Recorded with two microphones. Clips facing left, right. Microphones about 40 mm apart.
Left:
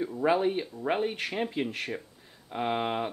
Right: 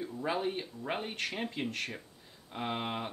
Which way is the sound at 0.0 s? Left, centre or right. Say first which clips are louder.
Left 8 dB; left.